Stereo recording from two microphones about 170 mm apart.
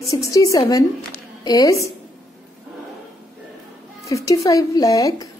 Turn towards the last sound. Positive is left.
turn(degrees=20)  # may be behind; listen again after turning